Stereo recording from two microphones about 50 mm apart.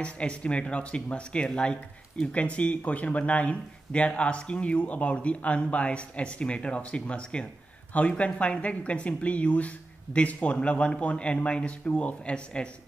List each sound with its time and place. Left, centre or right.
0.0 s speech: left